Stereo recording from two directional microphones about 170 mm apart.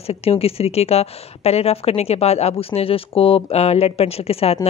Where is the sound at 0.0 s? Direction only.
35° left (ahead or behind).